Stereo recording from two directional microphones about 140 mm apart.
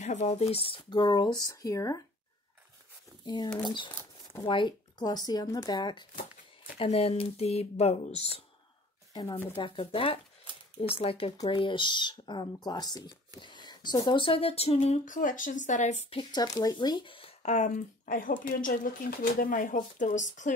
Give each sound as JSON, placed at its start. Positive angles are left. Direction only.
{"t": 0.0, "sound": "speech", "side_deg": 55}
{"t": 4.5, "sound": "speech", "side_deg": 35}
{"t": 6.8, "sound": "speech", "side_deg": 45}
{"t": 9.1, "sound": "speech", "side_deg": 30}
{"t": 16.2, "sound": "speech", "side_deg": 30}